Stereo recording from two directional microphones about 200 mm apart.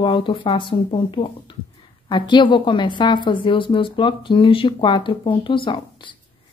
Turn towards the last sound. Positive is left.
turn(degrees=25)  # may be behind; listen again after turning